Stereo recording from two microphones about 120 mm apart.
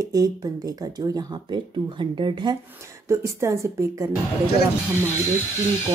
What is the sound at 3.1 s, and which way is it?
A woman's voice, 25° right (ahead or behind).